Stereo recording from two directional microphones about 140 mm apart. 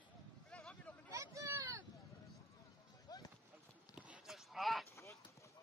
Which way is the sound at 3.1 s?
30° left (ahead or behind).